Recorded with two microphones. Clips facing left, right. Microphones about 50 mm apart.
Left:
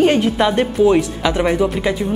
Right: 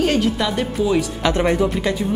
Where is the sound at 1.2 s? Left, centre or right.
Centre.